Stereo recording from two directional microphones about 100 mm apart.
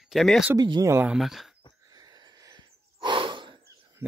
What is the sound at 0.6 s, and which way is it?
Speech, 45° right (ahead or behind).